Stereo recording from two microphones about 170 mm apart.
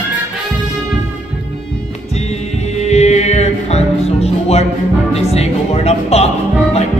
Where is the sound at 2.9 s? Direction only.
40° left (ahead or behind).